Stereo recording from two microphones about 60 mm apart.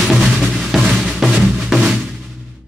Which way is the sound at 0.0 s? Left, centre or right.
Centre.